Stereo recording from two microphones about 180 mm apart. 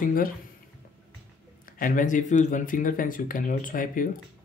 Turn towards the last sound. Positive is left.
turn(degrees=50)  # may be behind; listen again after turning